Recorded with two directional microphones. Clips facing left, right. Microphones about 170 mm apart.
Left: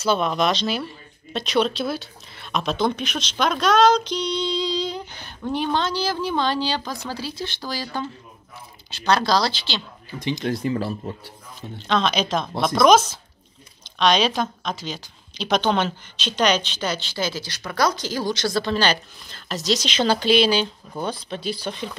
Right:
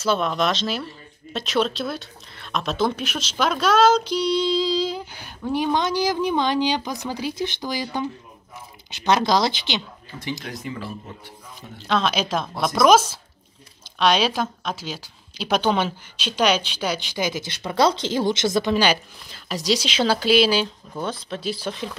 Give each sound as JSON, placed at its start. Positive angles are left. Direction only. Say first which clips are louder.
{"t": 0.0, "sound": "a woman's voice", "louder": "left 1 dB", "side_deg": 0}
{"t": 10.4, "sound": "speech", "louder": "left 9 dB", "side_deg": 35}
{"t": 11.9, "sound": "a woman's voice", "louder": "left 1 dB", "side_deg": -5}